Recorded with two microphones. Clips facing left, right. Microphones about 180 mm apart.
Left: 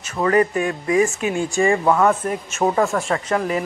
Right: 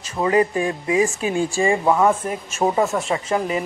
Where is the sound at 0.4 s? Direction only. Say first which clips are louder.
Even; 25° right (ahead or behind).